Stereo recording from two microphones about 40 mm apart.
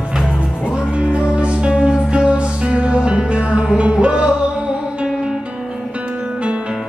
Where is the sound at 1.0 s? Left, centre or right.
Right.